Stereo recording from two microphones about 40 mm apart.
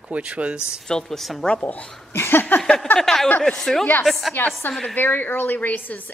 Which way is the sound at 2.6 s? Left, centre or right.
Centre.